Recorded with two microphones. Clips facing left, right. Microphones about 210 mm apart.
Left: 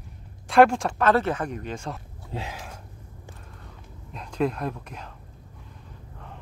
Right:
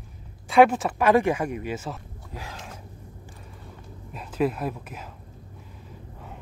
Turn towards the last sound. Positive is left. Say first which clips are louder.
# right 1 dB
turn(degrees=-5)  # may be behind; listen again after turning